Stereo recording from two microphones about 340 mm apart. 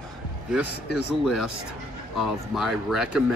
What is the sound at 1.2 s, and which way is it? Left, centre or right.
Speech, centre.